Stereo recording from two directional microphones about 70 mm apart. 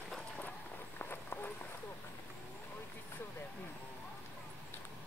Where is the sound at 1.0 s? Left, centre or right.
Left.